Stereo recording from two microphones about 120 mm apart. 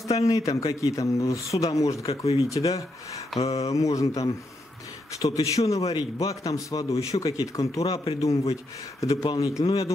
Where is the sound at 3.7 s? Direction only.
25° left (ahead or behind).